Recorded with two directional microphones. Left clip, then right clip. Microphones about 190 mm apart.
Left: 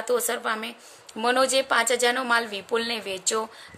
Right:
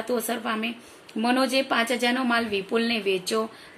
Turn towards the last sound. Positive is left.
turn(degrees=65)  # may be behind; listen again after turning